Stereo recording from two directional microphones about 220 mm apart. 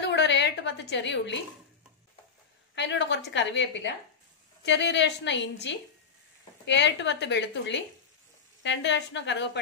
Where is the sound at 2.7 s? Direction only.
50° left (ahead or behind).